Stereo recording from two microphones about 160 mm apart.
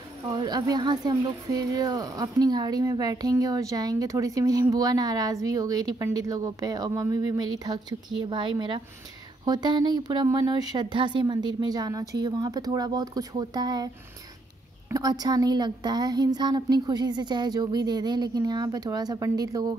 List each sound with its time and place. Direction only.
0.3 s speech: 25° right (ahead or behind)
14.9 s speech: 25° right (ahead or behind)